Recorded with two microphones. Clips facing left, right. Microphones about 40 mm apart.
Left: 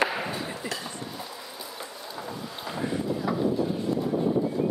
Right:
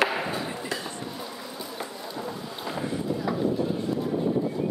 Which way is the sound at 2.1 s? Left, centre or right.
Centre.